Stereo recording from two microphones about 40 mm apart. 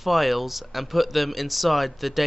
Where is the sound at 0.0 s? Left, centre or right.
Centre.